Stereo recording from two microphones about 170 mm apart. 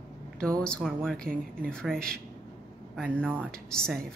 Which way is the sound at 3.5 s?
5° left (ahead or behind).